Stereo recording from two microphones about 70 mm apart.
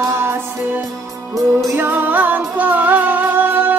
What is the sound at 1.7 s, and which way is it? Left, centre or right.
Music, right.